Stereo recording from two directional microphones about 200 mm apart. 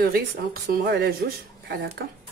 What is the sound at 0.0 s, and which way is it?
Speech, 50° right (ahead or behind).